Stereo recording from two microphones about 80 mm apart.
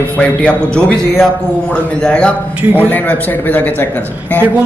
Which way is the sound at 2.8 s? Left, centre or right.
Left.